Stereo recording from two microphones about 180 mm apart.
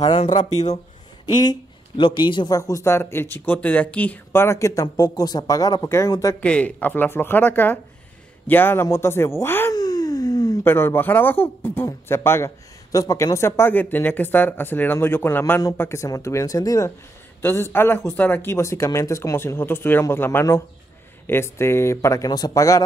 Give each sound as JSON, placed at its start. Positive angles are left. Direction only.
{"t": 1.2, "sound": "speech", "side_deg": 25}
{"t": 6.4, "sound": "speech", "side_deg": 5}